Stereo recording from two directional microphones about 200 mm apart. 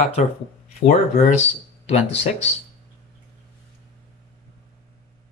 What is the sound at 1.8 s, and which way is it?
Speech, 30° left (ahead or behind).